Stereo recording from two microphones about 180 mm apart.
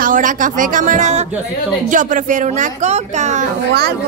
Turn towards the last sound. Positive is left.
turn(degrees=-65)  # may be behind; listen again after turning